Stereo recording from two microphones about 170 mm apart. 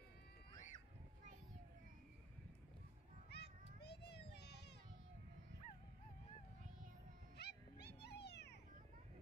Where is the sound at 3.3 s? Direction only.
75° left (ahead or behind).